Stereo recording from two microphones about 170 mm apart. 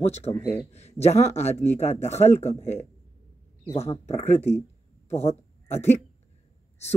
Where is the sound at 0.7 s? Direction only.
40° left (ahead or behind).